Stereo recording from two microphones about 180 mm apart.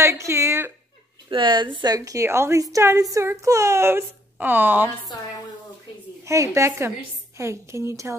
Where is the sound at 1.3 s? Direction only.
25° right (ahead or behind); by 4.9 s 10° right (ahead or behind).